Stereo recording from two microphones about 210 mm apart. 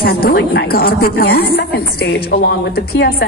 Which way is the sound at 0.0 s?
45° left (ahead or behind).